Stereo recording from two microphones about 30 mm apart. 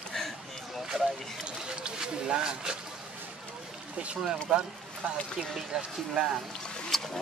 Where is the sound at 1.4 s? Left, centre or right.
Right.